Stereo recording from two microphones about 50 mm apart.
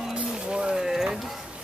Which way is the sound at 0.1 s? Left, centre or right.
Centre.